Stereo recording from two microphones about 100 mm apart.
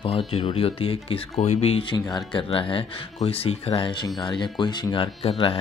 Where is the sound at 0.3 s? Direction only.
70° left (ahead or behind).